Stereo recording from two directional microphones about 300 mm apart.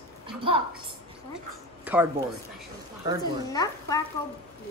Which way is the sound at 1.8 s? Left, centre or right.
Centre.